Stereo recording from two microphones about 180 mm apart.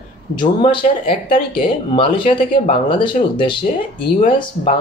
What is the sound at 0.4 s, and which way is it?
Speech, 25° left (ahead or behind).